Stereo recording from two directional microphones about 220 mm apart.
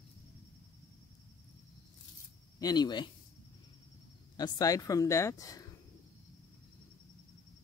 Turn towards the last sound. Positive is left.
turn(degrees=15)  # may be behind; listen again after turning